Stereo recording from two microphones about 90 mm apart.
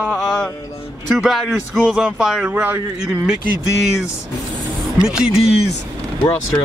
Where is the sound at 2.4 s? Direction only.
15° right (ahead or behind).